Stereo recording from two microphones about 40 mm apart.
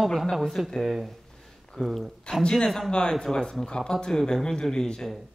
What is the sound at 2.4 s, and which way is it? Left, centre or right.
Speech, centre.